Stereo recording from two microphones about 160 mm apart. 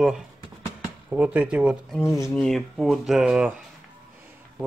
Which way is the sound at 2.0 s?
20° left (ahead or behind).